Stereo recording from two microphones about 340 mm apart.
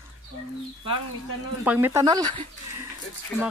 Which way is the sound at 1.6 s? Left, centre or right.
Centre.